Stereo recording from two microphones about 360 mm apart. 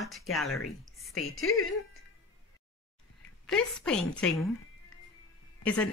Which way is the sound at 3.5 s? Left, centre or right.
Centre.